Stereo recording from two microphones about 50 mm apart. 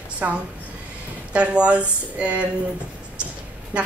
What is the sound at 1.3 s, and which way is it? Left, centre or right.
A woman's voice, right.